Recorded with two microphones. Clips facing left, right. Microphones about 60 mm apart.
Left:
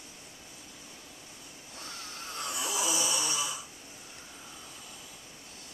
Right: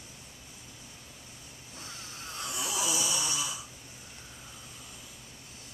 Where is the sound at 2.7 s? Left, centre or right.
Left.